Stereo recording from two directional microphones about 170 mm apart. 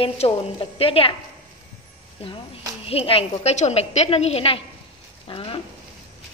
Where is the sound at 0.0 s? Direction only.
35° left (ahead or behind).